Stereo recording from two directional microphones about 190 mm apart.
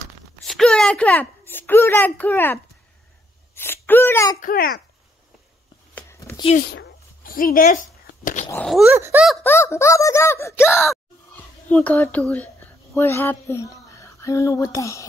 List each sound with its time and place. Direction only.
0.5 s a child's voice: 5° left (ahead or behind)
4.4 s a child's voice: 50° left (ahead or behind)
5.9 s a sound: 15° left (ahead or behind)
6.7 s a sound: 55° left (ahead or behind)
8.8 s speech: 15° right (ahead or behind)
9.4 s speech: 10° left (ahead or behind)